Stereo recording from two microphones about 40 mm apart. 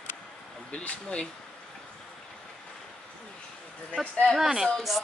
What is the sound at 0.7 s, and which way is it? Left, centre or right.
Speech, left.